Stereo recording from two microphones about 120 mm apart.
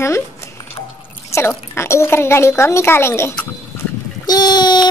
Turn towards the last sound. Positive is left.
turn(degrees=35)  # may be behind; listen again after turning